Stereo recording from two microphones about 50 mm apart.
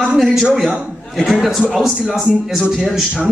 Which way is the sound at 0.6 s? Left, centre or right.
Centre.